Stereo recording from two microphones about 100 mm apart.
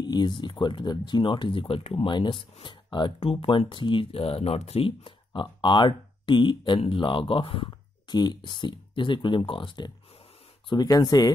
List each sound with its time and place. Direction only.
0.0 s a sound: 45° left (ahead or behind)
0.4 s speech: 50° left (ahead or behind); by 2.0 s 70° left (ahead or behind)
2.0 s speech: 50° left (ahead or behind)
10.7 s speech: 40° left (ahead or behind)